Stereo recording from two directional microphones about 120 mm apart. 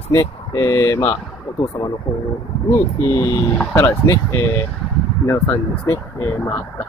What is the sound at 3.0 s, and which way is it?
Speech, 20° left (ahead or behind).